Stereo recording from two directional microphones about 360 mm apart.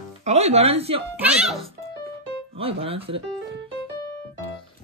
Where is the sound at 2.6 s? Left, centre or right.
Centre.